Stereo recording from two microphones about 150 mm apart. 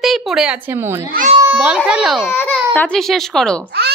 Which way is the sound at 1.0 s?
65° right (ahead or behind).